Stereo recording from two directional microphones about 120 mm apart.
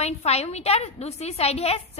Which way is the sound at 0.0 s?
60° left (ahead or behind).